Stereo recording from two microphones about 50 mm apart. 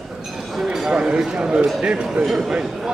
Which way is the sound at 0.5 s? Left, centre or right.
Centre.